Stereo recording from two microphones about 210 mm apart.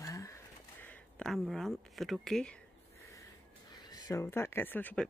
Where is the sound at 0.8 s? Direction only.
Centre (ahead or behind).